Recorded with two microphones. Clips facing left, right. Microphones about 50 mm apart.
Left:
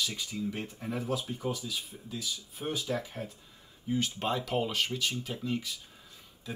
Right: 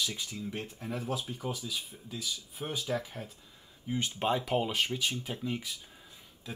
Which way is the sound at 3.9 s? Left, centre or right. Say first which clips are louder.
Even; centre.